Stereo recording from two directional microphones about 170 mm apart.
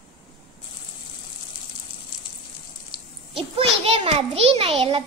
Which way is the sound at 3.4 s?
35° right (ahead or behind).